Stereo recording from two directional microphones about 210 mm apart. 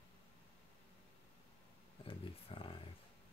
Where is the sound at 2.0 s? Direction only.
25° left (ahead or behind).